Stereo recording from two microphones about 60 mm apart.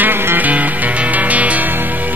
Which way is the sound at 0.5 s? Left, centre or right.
Right.